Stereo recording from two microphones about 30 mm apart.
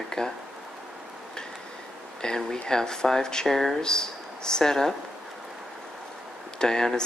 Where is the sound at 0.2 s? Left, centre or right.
Left.